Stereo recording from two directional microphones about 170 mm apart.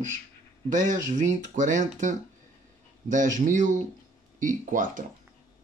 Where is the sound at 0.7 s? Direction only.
50° right (ahead or behind).